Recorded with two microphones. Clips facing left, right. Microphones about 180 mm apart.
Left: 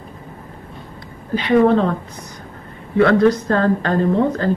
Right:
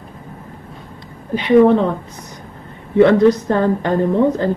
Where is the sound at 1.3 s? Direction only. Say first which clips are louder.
Right 3 dB; 15° right (ahead or behind).